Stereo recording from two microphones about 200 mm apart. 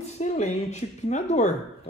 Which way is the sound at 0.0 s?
35° left (ahead or behind).